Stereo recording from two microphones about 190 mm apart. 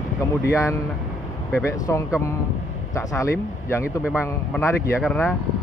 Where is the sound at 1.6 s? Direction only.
15° left (ahead or behind).